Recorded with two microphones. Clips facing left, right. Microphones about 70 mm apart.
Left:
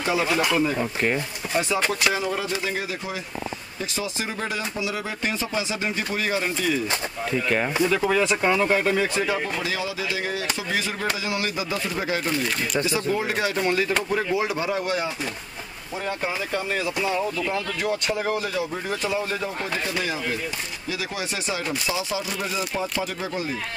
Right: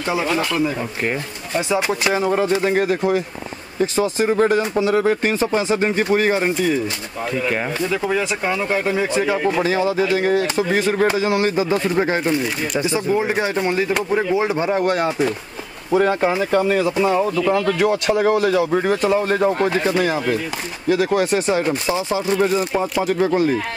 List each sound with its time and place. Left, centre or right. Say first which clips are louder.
0.7 s speech: right 1 dB; centre
2.1 s speech: right 8 dB; right
7.4 s speech: left 1 dB; centre
8.9 s speech: right 4 dB; right
9.6 s speech: right 10 dB; right
13.0 s speech: right 5 dB; centre
15.9 s speech: right 12 dB; right
19.0 s speech: right 7 dB; right
23.0 s speech: right 12 dB; right